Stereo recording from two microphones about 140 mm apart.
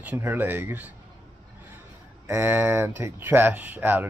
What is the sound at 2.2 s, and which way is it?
Speech, 15° right (ahead or behind).